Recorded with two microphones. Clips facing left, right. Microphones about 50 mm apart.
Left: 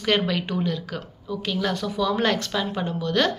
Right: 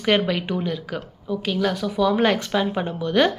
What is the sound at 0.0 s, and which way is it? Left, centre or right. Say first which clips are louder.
A woman's voice: right 2 dB; centre.